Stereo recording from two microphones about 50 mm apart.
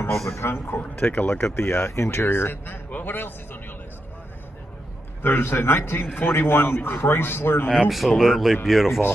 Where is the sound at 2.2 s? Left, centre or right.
Left.